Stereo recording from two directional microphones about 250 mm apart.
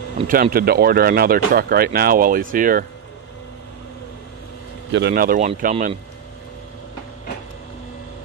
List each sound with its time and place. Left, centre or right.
0.3 s speech: right
4.9 s speech: right